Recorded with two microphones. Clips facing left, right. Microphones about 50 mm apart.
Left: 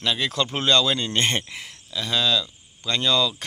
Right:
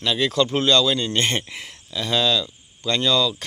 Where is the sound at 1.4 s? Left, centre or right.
Centre.